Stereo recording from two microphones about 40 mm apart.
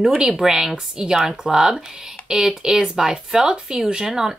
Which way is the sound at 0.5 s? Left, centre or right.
Centre.